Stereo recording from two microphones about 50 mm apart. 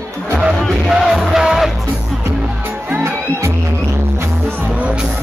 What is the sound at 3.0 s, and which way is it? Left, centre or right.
Music, right.